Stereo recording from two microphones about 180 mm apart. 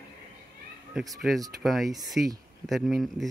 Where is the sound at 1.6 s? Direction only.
Centre (ahead or behind).